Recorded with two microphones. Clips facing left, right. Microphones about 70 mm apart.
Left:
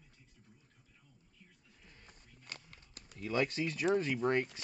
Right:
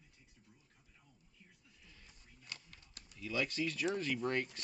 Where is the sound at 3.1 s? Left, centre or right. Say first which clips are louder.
Left 5 dB; left.